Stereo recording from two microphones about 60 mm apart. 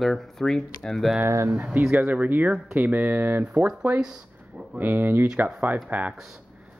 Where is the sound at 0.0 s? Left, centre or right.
Centre.